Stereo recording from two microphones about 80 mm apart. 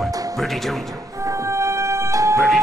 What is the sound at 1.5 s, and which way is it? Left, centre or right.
Music, right.